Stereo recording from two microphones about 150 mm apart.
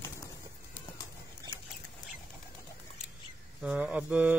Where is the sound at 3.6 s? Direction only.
5° right (ahead or behind).